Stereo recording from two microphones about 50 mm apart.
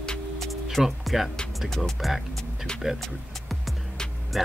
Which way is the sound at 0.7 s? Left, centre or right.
Centre.